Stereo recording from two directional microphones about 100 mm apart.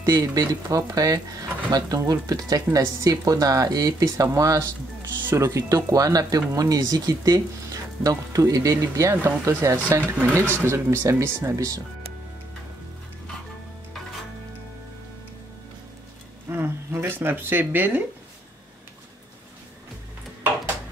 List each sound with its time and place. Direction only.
0.1 s speech: 35° right (ahead or behind)
5.2 s speech: 25° right (ahead or behind)
16.4 s a sound: 25° right (ahead or behind)